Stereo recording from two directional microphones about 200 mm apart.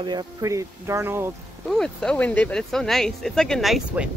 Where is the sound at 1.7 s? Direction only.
5° left (ahead or behind).